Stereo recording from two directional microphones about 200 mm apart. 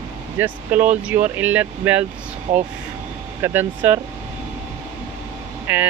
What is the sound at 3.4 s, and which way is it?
Speech, 10° right (ahead or behind).